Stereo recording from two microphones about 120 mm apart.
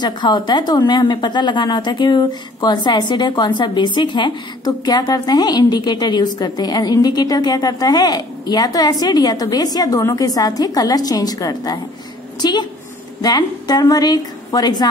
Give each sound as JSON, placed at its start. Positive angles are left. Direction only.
{"t": 0.0, "sound": "a woman's voice", "side_deg": 35}